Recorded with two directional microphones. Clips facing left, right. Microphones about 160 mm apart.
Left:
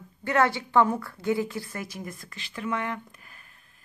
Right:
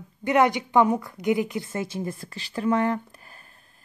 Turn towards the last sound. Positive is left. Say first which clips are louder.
# right 7 dB
turn(degrees=-35)  # may be behind; listen again after turning